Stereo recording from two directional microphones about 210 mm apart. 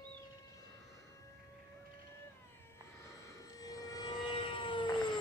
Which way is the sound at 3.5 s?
15° left (ahead or behind).